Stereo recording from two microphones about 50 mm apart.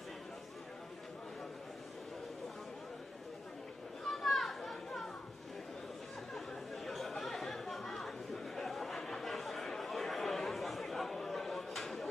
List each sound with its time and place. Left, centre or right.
4.1 s children playing: centre
6.3 s chatter: centre